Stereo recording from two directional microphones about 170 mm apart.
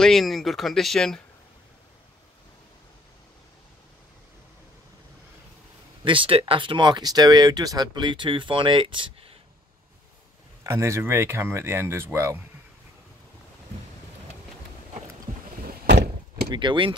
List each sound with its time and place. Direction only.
0.0 s speech: centre (ahead or behind)
6.0 s speech: 30° right (ahead or behind)
10.6 s speech: 15° right (ahead or behind)
15.6 s door: 75° right (ahead or behind)
16.4 s speech: 30° right (ahead or behind)